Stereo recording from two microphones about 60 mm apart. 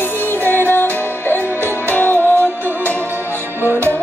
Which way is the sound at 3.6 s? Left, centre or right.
Right.